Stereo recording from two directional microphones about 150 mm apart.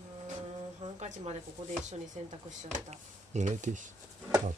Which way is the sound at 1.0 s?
50° right (ahead or behind).